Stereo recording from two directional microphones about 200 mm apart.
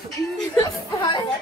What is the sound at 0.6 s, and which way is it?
Speech, 15° left (ahead or behind).